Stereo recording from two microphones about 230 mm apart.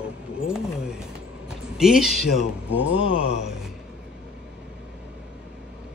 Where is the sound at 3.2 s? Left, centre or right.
Left.